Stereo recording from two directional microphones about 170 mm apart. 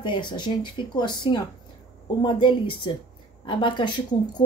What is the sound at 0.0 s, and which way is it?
Speech, 25° left (ahead or behind).